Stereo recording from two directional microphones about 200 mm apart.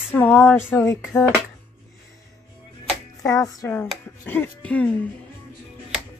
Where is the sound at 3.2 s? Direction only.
15° left (ahead or behind).